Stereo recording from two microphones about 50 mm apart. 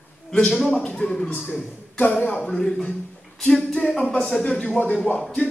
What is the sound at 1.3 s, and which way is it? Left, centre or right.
Speech, left.